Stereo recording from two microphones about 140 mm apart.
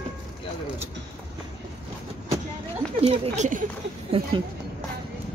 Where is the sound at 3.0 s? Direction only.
50° right (ahead or behind).